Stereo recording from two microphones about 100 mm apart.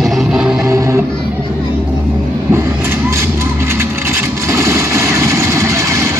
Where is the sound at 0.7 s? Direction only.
30° right (ahead or behind).